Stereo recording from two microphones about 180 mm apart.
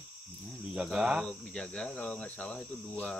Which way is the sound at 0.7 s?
5° right (ahead or behind).